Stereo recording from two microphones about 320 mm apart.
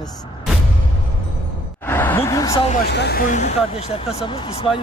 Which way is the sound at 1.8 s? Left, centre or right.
Centre.